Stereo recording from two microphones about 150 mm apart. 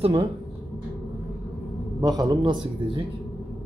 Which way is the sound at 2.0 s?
25° right (ahead or behind).